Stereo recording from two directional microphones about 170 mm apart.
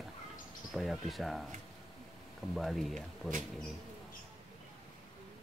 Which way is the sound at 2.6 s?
Centre (ahead or behind).